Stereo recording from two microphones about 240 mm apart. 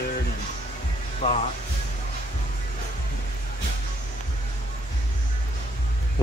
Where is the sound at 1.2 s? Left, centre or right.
Left.